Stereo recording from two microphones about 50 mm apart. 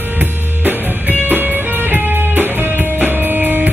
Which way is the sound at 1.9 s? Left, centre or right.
Right.